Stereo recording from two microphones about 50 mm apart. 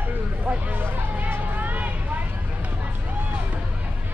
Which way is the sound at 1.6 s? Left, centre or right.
Right.